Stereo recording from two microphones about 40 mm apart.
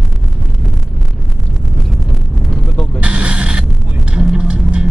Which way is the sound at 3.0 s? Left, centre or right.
Right.